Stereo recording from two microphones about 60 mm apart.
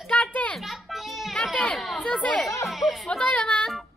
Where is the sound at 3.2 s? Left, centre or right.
Left.